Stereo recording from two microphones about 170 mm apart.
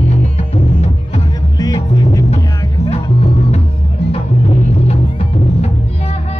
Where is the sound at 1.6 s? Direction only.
20° left (ahead or behind).